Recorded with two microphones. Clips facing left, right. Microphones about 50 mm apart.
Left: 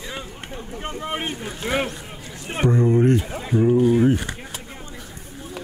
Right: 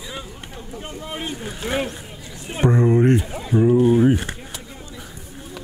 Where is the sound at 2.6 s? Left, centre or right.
Right.